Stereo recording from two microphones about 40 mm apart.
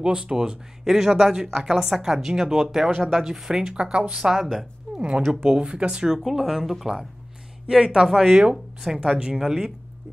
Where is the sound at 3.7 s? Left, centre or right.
Right.